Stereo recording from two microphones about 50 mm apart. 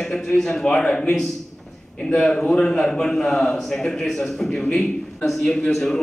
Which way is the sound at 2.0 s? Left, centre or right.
Centre.